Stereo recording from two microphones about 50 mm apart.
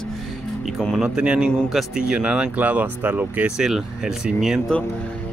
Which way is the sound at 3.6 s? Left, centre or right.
Centre.